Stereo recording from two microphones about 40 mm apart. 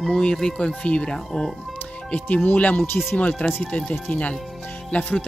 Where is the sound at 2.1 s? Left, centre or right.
Left.